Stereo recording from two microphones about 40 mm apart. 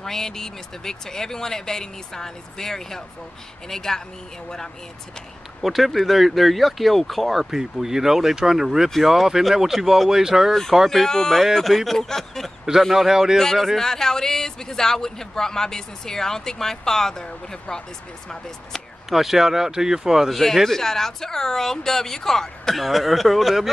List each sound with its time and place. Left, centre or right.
0.0 s speech: centre
5.6 s speech: centre
10.9 s speech: centre
11.4 s speech: centre
12.9 s speech: centre
13.7 s speech: centre
19.0 s speech: centre
20.3 s speech: centre
22.8 s speech: centre